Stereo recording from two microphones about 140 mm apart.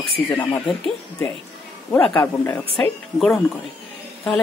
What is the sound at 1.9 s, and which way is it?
Speech, 15° left (ahead or behind).